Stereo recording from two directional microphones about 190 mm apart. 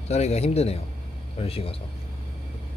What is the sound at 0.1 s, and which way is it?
Speech, 35° left (ahead or behind).